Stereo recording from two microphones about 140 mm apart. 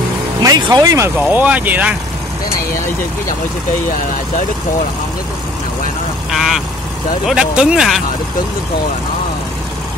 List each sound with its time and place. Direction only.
0.4 s speech: 25° right (ahead or behind); by 2.0 s 10° right (ahead or behind)
6.3 s speech: centre (ahead or behind)